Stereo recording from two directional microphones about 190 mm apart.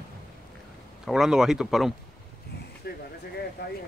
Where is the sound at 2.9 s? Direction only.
55° left (ahead or behind).